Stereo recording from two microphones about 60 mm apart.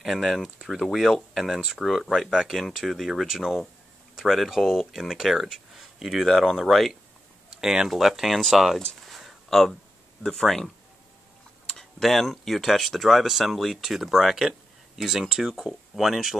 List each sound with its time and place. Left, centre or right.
0.0 s speech: centre
7.4 s a sound: centre
7.9 s speech: centre